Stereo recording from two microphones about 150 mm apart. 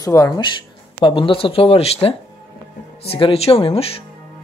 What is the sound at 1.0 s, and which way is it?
Speech, 35° left (ahead or behind).